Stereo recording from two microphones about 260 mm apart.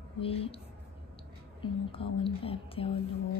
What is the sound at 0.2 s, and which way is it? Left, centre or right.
Speech, left.